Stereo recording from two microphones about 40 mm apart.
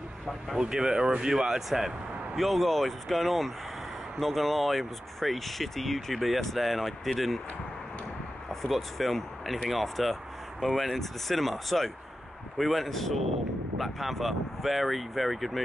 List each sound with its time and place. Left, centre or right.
0.6 s speech: centre
1.7 s speech: centre
8.5 s speech: centre